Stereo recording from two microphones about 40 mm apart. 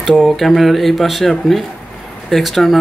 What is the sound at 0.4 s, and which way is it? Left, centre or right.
Speech, centre.